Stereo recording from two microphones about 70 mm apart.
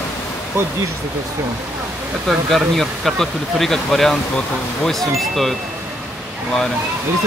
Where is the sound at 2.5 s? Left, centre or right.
Centre.